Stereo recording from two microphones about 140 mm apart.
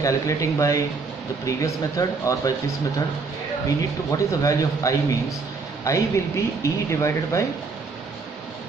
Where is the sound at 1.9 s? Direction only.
25° left (ahead or behind).